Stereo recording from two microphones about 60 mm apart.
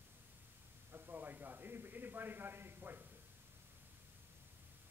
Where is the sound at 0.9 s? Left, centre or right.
Right.